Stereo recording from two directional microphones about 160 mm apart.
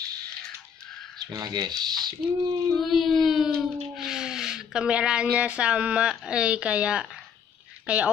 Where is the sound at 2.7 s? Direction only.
Centre (ahead or behind).